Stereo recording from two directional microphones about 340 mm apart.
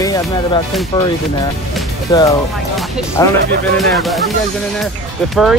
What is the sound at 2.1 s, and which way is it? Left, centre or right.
Speech, centre.